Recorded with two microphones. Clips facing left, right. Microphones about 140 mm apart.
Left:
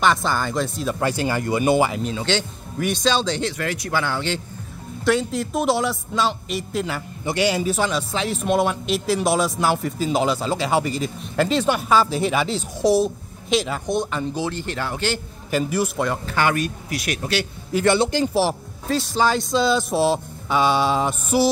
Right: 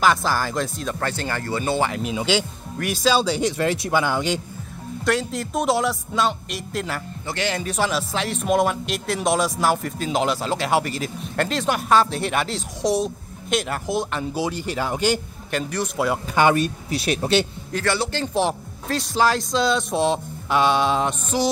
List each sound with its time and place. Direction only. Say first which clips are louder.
0.0 s speech: even; centre (ahead or behind)
0.9 s speech: left 6 dB; 10° left (ahead or behind)
1.9 s speech: right 1 dB; centre (ahead or behind)
3.5 s speech: right 3 dB; 25° right (ahead or behind)
5.0 s speech: left 3 dB; centre (ahead or behind)
7.2 s speech: left 6 dB; 10° left (ahead or behind); by 15.1 s 15° right (ahead or behind)
15.5 s speech: left 4 dB; 5° left (ahead or behind)
16.3 s speech: right 4 dB; 25° right (ahead or behind)
17.8 s speech: left 5 dB; 20° left (ahead or behind)
18.2 s speech: left 2 dB; 5° left (ahead or behind)